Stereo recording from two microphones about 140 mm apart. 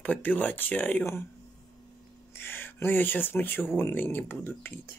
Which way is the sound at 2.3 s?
15° left (ahead or behind).